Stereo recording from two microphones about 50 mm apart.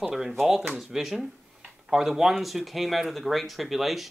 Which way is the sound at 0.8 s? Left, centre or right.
Centre.